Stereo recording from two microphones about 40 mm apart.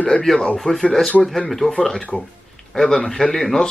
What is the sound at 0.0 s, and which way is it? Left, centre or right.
Speech, left.